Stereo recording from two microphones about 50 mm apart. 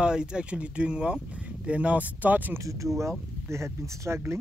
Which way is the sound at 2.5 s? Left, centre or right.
Right.